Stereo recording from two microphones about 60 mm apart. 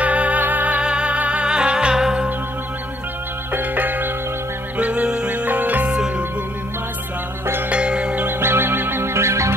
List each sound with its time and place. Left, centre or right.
0.0 s music: right
3.5 s music: right
4.7 s music: right
5.9 s music: centre
7.7 s music: centre
8.3 s music: right